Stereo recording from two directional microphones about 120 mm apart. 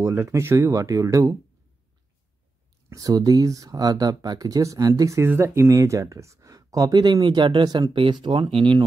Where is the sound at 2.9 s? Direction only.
30° right (ahead or behind).